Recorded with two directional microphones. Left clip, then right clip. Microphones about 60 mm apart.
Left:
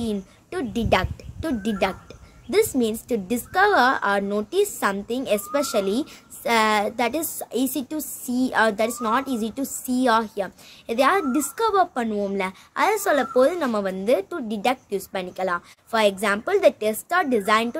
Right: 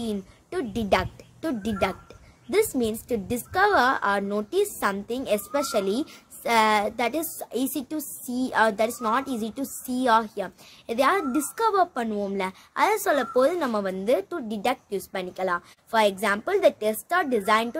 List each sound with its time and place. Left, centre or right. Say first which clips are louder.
0.0 s a woman's voice: left 3 dB; right